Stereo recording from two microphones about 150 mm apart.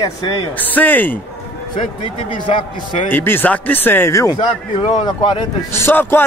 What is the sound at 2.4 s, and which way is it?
Speech, 35° left (ahead or behind).